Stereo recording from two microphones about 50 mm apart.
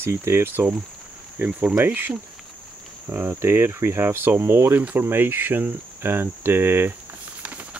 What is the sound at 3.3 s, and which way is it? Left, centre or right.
Cricket, right.